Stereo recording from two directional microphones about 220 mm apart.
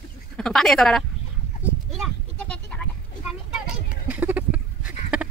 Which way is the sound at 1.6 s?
5° right (ahead or behind).